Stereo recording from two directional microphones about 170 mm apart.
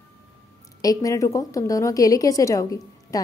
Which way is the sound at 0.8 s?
20° left (ahead or behind).